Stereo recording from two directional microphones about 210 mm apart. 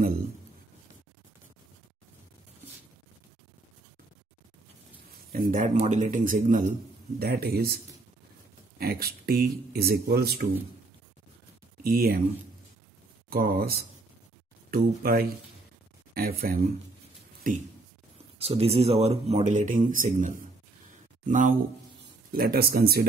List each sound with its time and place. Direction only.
5.3 s speech: 40° right (ahead or behind)
11.8 s speech: 45° right (ahead or behind)
13.3 s speech: 45° right (ahead or behind)
18.4 s speech: 30° right (ahead or behind); by 23.0 s 45° right (ahead or behind)